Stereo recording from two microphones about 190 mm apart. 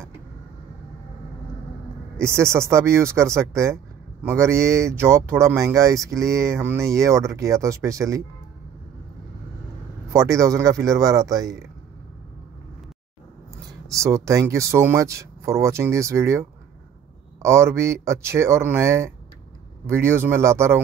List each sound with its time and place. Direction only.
2.1 s speech: 15° right (ahead or behind)
10.0 s speech: 15° right (ahead or behind)
13.7 s speech: 15° right (ahead or behind)